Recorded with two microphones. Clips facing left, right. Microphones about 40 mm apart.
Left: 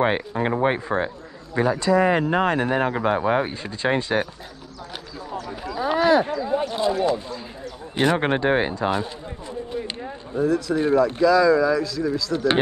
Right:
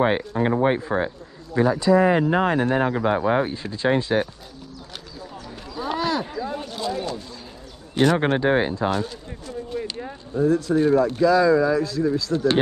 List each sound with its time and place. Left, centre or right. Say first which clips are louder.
0.0 s speech: right 1 dB; centre
1.8 s speech: right 1 dB; centre
5.7 s a sound: left 6 dB; centre
6.5 s speech: left 8 dB; left
10.4 s a man's voice: right 2 dB; left
11.2 s speech: even; left
12.3 s speech: right 1 dB; left